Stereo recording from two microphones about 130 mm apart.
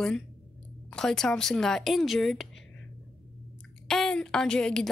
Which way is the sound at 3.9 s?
5° left (ahead or behind).